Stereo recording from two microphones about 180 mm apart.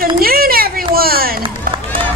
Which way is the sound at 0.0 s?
55° right (ahead or behind).